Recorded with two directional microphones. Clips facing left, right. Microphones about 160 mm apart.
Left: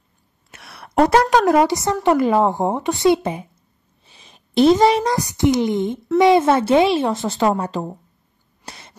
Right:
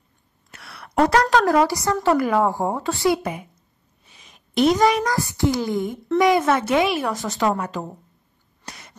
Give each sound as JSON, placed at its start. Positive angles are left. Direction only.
{"t": 0.5, "sound": "a sound", "side_deg": 25}
{"t": 2.0, "sound": "speech", "side_deg": 25}
{"t": 8.6, "sound": "throat clearing", "side_deg": 30}